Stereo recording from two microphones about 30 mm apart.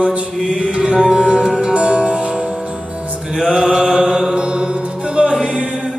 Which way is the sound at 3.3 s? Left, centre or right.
Centre.